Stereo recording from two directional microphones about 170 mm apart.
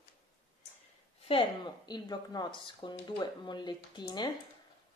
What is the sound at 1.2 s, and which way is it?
Speech, 30° left (ahead or behind).